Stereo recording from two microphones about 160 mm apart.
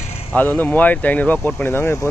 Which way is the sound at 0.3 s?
10° left (ahead or behind).